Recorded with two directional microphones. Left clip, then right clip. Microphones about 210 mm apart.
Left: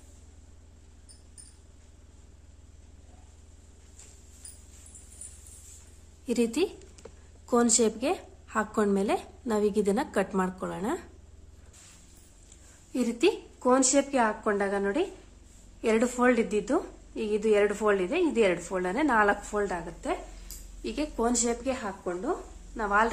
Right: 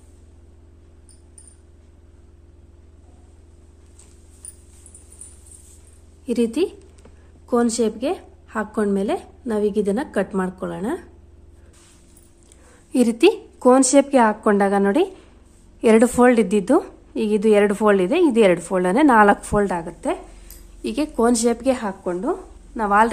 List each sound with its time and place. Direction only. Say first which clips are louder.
6.2 s a woman's voice: right 7 dB; 15° right (ahead or behind)
12.9 s a woman's voice: right 10 dB; 45° right (ahead or behind)